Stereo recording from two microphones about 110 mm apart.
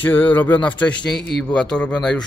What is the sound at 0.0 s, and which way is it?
Speech, 15° left (ahead or behind).